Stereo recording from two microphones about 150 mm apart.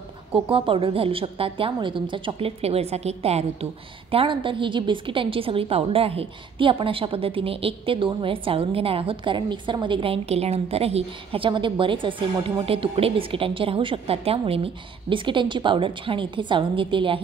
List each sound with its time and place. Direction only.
0.3 s a woman's voice: 35° right (ahead or behind)